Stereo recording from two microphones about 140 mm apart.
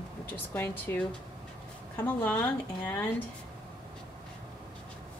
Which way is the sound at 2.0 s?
10° left (ahead or behind).